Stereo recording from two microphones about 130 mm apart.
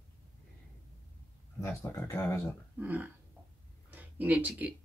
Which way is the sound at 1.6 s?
15° left (ahead or behind).